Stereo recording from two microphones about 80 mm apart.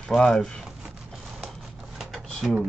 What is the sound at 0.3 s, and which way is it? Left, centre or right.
Speech, centre.